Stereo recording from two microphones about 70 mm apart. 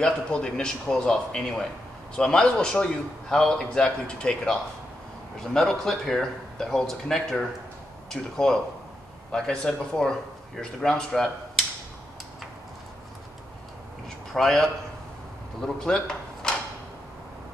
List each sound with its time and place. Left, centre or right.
0.0 s a man's voice: centre
14.3 s a man's voice: centre
16.4 s mechanisms: centre